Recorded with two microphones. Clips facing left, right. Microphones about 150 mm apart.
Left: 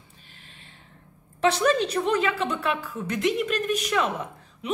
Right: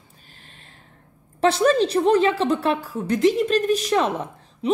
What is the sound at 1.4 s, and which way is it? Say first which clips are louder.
A woman's voice: right 4 dB; 35° right (ahead or behind).